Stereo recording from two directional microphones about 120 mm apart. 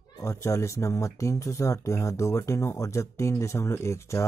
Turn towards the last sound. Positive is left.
turn(degrees=25)  # may be behind; listen again after turning